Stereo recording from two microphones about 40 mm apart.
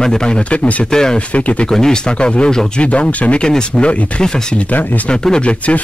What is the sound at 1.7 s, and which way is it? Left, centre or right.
Speech, centre.